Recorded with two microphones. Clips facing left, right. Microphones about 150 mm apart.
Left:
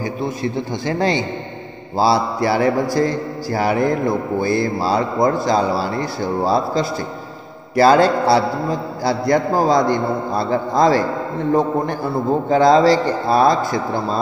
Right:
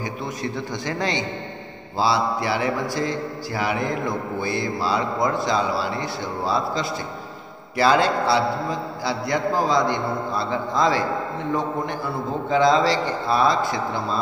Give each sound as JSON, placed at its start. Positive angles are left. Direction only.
{"t": 0.0, "sound": "a man's voice", "side_deg": 30}